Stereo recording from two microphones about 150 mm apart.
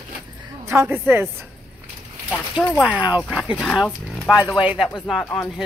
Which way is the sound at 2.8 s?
10° right (ahead or behind).